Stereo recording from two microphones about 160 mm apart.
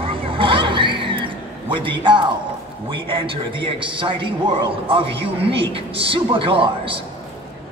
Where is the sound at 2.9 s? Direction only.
30° right (ahead or behind).